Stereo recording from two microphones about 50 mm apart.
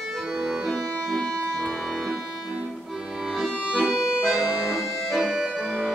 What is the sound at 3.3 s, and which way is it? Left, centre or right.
Accordion, centre.